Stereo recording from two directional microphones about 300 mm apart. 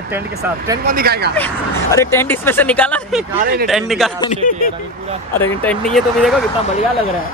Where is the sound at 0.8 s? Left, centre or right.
Right.